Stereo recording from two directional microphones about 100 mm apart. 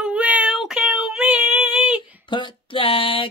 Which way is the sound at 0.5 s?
5° right (ahead or behind).